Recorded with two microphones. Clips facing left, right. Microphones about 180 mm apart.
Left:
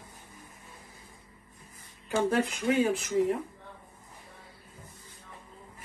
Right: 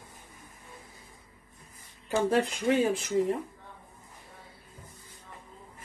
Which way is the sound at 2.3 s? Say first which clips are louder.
Right 4 dB; 30° right (ahead or behind).